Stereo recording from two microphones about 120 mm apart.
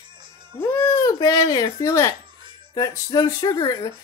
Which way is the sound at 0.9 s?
30° left (ahead or behind).